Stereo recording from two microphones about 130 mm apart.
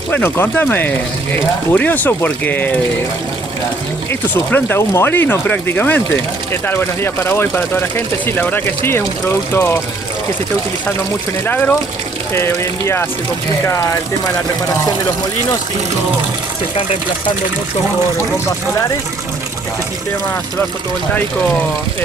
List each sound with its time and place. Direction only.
0.1 s speech: 15° left (ahead or behind)
4.1 s speech: 15° left (ahead or behind)
11.4 s speech: 15° left (ahead or behind)